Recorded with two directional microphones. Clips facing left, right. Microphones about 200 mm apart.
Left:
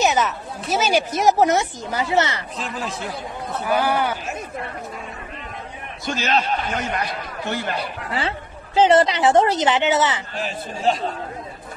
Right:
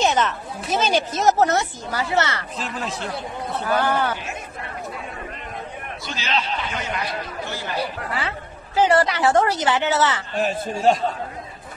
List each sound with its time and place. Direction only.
0.0 s a sound: 5° left (ahead or behind)
0.6 s speech: 5° left (ahead or behind)
2.5 s speech: centre (ahead or behind)
3.6 s speech: 10° left (ahead or behind)
6.0 s a man's voice: 50° left (ahead or behind)
8.1 s a woman's voice: 25° left (ahead or behind)
10.4 s a man's voice: 45° right (ahead or behind)